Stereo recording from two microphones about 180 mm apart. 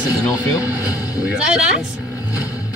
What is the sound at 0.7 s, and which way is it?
Speech, 10° right (ahead or behind).